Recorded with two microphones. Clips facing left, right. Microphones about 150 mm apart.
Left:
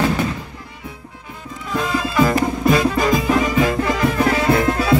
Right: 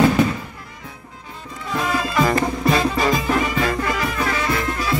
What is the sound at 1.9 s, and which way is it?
Music, centre (ahead or behind).